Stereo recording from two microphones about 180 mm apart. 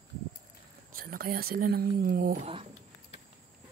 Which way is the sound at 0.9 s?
55° right (ahead or behind).